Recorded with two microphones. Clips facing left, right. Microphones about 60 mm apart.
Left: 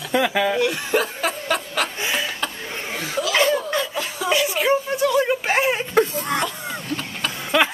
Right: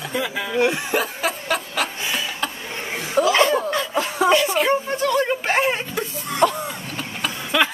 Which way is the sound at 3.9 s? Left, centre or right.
Right.